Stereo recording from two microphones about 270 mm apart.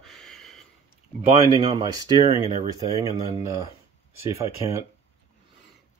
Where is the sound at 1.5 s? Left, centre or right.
Centre.